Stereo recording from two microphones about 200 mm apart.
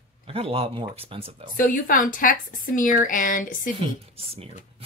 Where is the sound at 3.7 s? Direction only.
30° right (ahead or behind).